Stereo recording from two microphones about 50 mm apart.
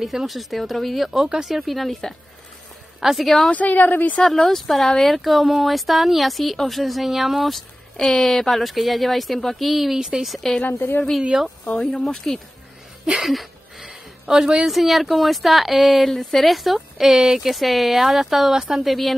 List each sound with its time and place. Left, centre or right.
0.0 s speech: centre
3.5 s a woman's voice: left
4.2 s speech: centre
10.8 s a woman's voice: left
11.6 s speech: left
12.1 s speech: centre
13.2 s a sound: centre
14.2 s a woman's voice: centre